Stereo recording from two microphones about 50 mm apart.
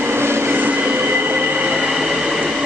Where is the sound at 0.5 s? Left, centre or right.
Right.